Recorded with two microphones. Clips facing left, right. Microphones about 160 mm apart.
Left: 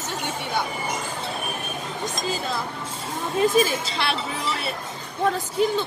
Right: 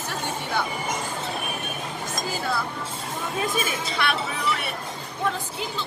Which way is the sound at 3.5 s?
30° left (ahead or behind).